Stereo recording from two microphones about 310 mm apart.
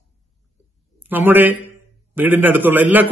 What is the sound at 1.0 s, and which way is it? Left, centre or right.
A man's voice, centre.